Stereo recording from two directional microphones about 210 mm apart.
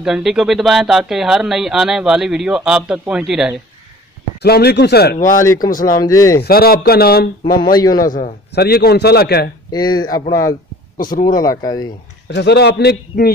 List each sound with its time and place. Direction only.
0.0 s speech: centre (ahead or behind)
4.4 s a man's voice: 50° left (ahead or behind)
5.2 s speech: 15° left (ahead or behind)
6.4 s a man's voice: 45° left (ahead or behind)
7.4 s speech: 20° left (ahead or behind)
8.1 s a man's voice: 45° left (ahead or behind)
9.7 s speech: 20° left (ahead or behind)
11.0 s speech: 40° left (ahead or behind)
11.2 s speech: 20° left (ahead or behind)
12.3 s a man's voice: 55° left (ahead or behind)